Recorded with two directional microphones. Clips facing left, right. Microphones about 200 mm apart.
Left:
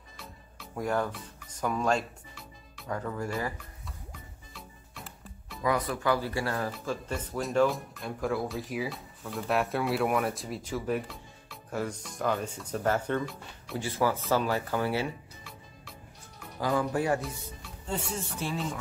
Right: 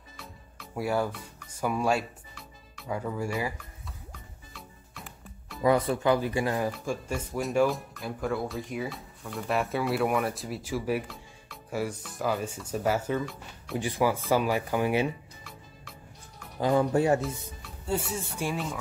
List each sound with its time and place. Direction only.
0.2 s music: 5° right (ahead or behind)
4.1 s music: centre (ahead or behind)
5.6 s speech: 30° right (ahead or behind); by 13.7 s centre (ahead or behind)
13.7 s speech: 15° right (ahead or behind)
16.5 s speech: 25° right (ahead or behind)
17.2 s music: centre (ahead or behind)